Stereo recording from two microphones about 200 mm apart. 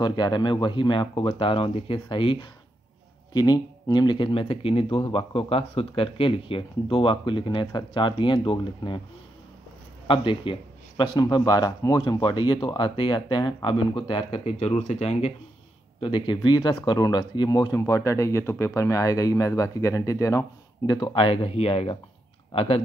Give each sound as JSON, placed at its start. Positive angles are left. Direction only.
{"t": 0.0, "sound": "speech", "side_deg": 20}
{"t": 10.0, "sound": "speech", "side_deg": 25}